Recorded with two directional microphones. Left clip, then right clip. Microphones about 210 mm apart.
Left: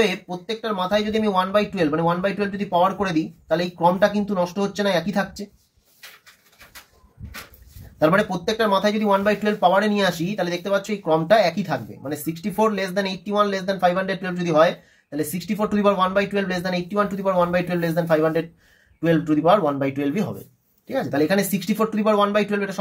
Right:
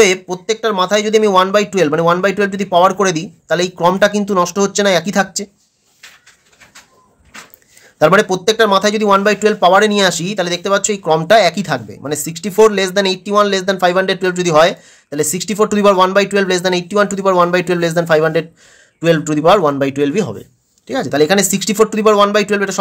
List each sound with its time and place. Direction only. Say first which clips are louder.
0.0 s speech: right 10 dB; 45° right (ahead or behind)
8.0 s speech: right 8 dB; 40° right (ahead or behind)